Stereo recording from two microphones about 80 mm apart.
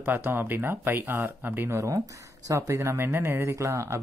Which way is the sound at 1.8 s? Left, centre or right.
Right.